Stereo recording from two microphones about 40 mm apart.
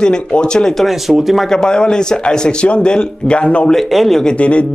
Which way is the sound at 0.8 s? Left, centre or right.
Centre.